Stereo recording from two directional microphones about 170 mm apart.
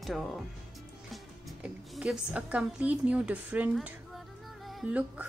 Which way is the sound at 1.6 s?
5° right (ahead or behind).